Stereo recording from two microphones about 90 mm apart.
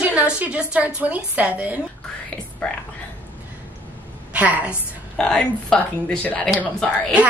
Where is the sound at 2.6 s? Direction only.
10° left (ahead or behind).